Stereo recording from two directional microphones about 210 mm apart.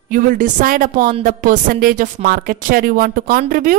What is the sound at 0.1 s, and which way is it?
A woman's voice, 40° right (ahead or behind).